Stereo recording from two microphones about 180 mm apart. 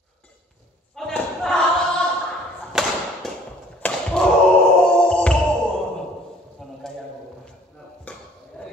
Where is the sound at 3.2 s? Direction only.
Centre (ahead or behind).